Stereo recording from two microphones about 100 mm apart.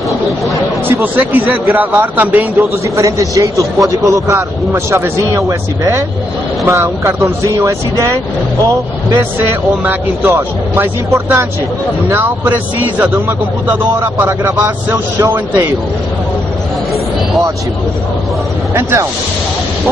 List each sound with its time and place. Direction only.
0.8 s speech: 20° right (ahead or behind)
2.5 s a man's voice: 30° right (ahead or behind)
14.0 s speech: 25° right (ahead or behind)
18.8 s speech: 25° right (ahead or behind)